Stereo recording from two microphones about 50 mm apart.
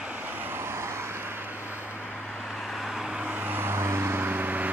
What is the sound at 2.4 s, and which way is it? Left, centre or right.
Vehicle, centre.